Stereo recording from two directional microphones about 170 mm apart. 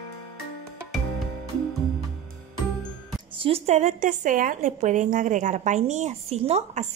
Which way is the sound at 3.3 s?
35° right (ahead or behind).